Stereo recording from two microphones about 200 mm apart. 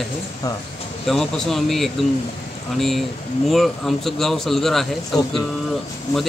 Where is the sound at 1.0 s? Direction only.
Centre (ahead or behind).